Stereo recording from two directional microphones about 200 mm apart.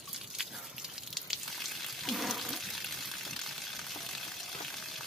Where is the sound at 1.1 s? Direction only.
Centre (ahead or behind).